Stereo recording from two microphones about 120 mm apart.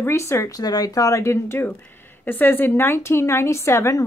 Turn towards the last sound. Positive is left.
turn(degrees=25)  # may be behind; listen again after turning